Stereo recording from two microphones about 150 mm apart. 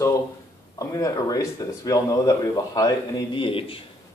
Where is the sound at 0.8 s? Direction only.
25° left (ahead or behind).